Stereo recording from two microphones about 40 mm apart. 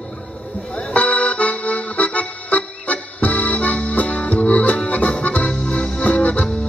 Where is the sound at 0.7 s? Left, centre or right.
Left.